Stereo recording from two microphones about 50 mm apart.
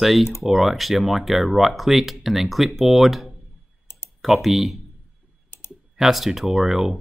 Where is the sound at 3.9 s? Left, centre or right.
Left.